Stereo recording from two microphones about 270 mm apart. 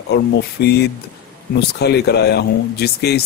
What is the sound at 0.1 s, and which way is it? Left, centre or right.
Speech, left.